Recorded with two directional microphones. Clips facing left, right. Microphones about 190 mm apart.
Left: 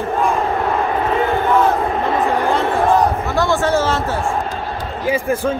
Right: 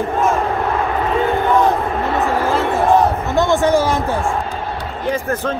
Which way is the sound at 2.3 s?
Centre (ahead or behind).